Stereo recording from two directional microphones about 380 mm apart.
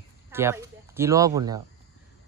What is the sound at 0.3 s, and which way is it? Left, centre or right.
Speech, centre.